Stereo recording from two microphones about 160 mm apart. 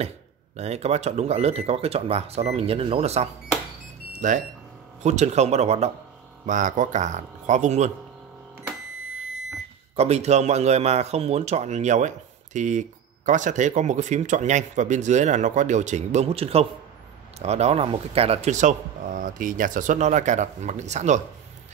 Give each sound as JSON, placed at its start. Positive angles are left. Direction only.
{"t": 0.6, "sound": "speech", "side_deg": -40}
{"t": 4.1, "sound": "a sound", "side_deg": -50}
{"t": 5.0, "sound": "speech", "side_deg": -45}
{"t": 6.4, "sound": "speech", "side_deg": -55}
{"t": 9.9, "sound": "speech", "side_deg": -45}